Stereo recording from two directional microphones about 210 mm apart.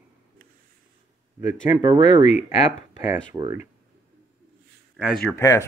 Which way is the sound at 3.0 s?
15° right (ahead or behind).